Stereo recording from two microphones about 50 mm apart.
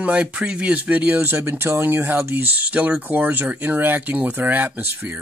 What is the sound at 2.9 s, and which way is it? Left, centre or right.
Speech, right.